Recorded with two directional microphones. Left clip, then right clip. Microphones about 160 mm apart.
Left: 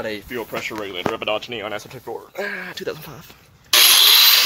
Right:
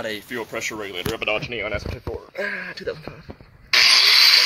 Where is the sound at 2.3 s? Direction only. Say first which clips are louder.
Even; 35° left (ahead or behind).